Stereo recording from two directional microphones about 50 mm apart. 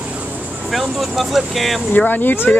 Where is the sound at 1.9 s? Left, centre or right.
Left.